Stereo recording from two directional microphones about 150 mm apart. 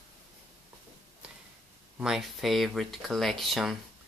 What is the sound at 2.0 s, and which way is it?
Speech, 5° right (ahead or behind).